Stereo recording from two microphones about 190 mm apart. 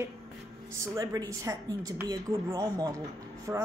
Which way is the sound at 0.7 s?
20° right (ahead or behind).